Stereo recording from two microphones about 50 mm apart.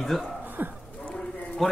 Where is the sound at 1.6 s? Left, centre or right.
Centre.